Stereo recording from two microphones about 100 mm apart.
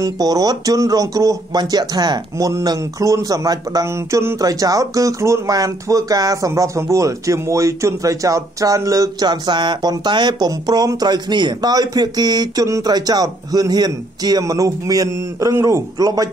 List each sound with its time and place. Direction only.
0.0 s speech: 40° right (ahead or behind)
3.8 s speech: 30° right (ahead or behind)
4.4 s speech: 35° right (ahead or behind)